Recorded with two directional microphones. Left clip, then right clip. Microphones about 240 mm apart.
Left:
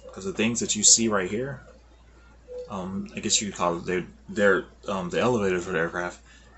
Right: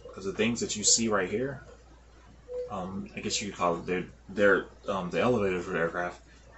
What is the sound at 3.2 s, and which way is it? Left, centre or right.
Speech, left.